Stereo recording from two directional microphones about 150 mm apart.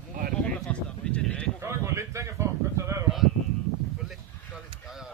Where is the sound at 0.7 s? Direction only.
10° left (ahead or behind).